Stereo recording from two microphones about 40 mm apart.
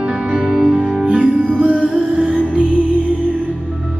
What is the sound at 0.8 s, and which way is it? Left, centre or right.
Music, right.